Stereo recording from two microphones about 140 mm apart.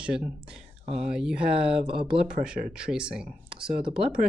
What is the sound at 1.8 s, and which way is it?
Speech, 40° right (ahead or behind).